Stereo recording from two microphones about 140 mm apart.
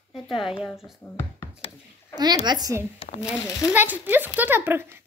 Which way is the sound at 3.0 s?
45° left (ahead or behind).